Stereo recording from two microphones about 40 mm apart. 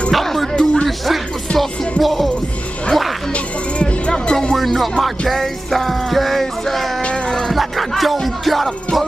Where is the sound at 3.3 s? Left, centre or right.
Left.